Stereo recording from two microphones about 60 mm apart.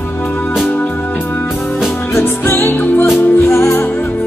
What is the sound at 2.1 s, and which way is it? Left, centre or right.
Music, left.